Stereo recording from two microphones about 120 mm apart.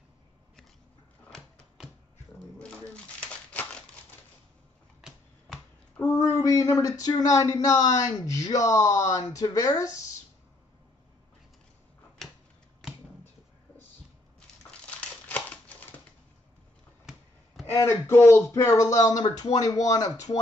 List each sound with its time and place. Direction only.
2.6 s crumpling: 10° left (ahead or behind)
5.9 s speech: 20° left (ahead or behind)
12.2 s a sound: centre (ahead or behind)
14.7 s crumpling: 10° left (ahead or behind)
17.6 s speech: 20° left (ahead or behind)